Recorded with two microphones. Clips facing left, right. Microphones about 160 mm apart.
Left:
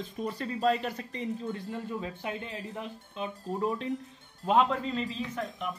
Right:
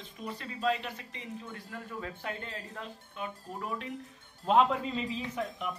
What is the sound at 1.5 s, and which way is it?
Speech, 20° left (ahead or behind).